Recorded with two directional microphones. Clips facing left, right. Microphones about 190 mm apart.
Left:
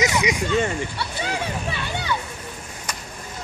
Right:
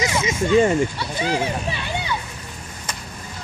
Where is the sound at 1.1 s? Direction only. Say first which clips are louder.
Right 3 dB; 25° right (ahead or behind).